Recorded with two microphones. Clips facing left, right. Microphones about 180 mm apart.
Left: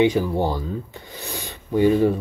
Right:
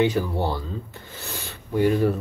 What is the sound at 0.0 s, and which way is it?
Speech, 15° left (ahead or behind).